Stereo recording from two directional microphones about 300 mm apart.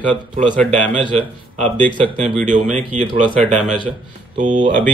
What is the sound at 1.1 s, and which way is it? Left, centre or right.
Speech, right.